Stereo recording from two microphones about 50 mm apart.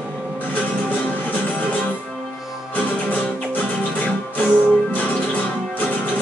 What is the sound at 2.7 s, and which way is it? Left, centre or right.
Music, left.